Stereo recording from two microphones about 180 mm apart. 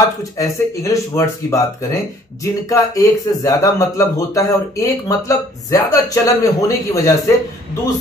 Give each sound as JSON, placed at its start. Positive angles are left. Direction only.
{"t": 0.2, "sound": "speech", "side_deg": 20}